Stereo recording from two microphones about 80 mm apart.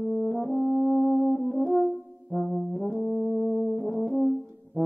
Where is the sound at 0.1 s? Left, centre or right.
Centre.